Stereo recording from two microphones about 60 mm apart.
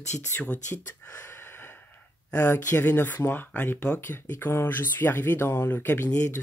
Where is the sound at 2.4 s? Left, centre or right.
Left.